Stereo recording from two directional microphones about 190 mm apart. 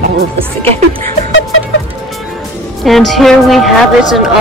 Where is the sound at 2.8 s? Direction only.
Centre (ahead or behind).